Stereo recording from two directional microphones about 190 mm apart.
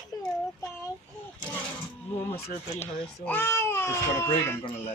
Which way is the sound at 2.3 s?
35° left (ahead or behind).